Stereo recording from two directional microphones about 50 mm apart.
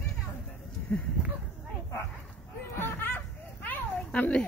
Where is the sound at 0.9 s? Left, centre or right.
Left.